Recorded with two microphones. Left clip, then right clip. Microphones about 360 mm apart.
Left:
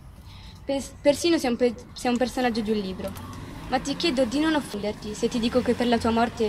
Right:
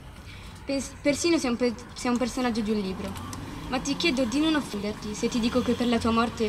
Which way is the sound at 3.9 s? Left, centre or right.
Left.